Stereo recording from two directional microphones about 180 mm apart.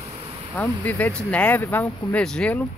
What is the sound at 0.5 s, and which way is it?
Speech, 10° left (ahead or behind).